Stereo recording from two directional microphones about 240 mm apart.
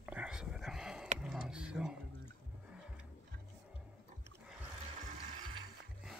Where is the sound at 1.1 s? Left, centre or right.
Centre.